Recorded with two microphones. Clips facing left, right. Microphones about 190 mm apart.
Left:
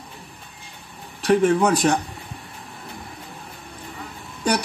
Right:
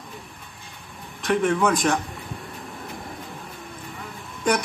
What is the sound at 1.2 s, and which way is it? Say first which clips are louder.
Speech: left 4 dB; 35° left (ahead or behind).